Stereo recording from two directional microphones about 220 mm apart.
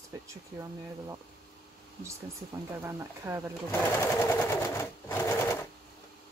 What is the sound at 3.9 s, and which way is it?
Sewing machine, 10° left (ahead or behind).